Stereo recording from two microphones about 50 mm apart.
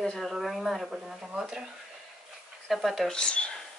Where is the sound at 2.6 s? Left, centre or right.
Centre.